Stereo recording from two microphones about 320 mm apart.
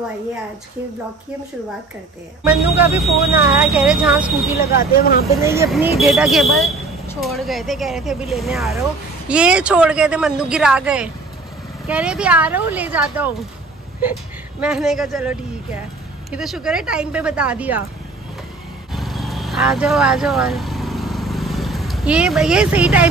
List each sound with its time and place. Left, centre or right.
3.0 s speech: centre
4.7 s speech: left
5.4 s speech: centre
14.6 s speech: centre
18.9 s vehicle: centre